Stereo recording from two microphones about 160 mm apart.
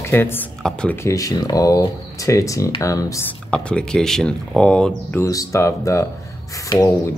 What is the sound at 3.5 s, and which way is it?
Speech, 5° left (ahead or behind).